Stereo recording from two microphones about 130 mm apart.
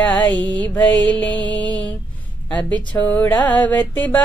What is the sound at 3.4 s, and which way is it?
Music, 10° left (ahead or behind).